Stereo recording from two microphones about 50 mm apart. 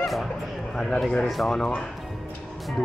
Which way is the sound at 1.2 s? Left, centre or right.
Centre.